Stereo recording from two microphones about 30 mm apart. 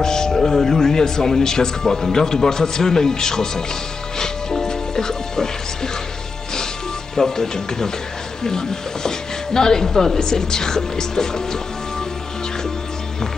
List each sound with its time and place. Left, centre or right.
0.0 s speech: left
4.2 s music: left
7.2 s speech: centre